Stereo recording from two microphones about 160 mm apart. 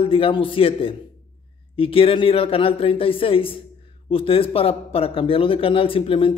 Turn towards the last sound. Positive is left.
turn(degrees=35)  # may be behind; listen again after turning